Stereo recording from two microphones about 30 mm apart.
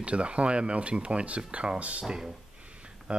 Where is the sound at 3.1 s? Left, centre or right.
Right.